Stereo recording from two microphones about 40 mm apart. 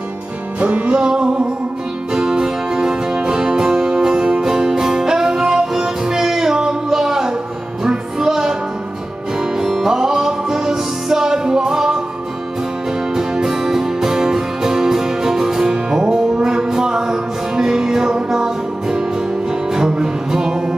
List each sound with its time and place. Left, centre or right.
0.6 s music: right; by 12.0 s centre
13.1 s music: centre